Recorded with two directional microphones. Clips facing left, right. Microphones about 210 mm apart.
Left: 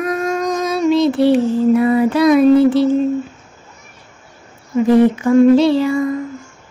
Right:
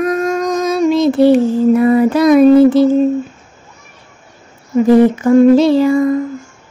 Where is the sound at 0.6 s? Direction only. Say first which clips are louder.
Right 2 dB; 45° right (ahead or behind).